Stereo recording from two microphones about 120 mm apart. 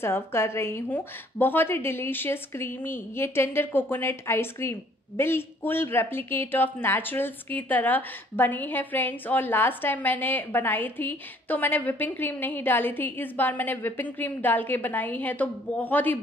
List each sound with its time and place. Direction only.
0.0 s a woman's voice: 20° left (ahead or behind)